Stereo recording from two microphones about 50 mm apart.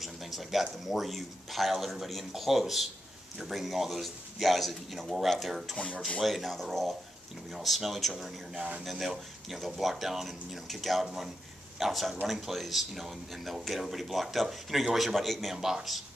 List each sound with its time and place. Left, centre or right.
0.0 s speech: centre
11.1 s speech: centre